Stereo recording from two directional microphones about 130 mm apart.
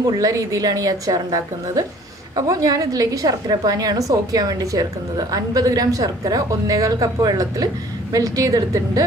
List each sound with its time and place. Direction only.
0.0 s a woman's voice: 30° right (ahead or behind)